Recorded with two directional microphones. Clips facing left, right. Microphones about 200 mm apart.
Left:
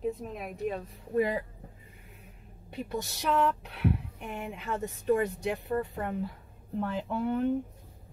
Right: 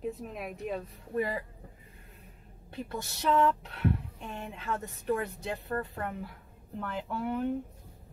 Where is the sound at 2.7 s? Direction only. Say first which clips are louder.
Left 3 dB; 15° left (ahead or behind).